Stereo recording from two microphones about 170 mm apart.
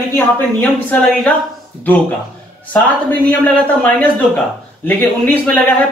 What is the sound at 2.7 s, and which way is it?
Speech, 10° left (ahead or behind).